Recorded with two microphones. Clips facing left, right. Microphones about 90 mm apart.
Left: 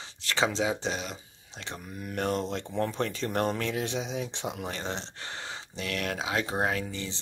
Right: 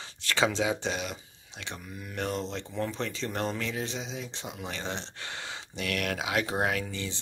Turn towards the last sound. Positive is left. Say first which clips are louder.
# even
turn(degrees=25)  # may be behind; listen again after turning